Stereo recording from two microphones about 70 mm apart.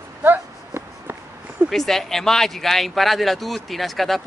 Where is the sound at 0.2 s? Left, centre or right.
Right.